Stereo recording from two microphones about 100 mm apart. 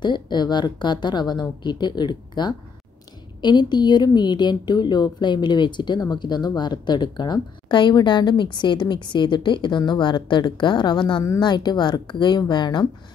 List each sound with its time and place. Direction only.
0.0 s a woman's voice: 50° left (ahead or behind)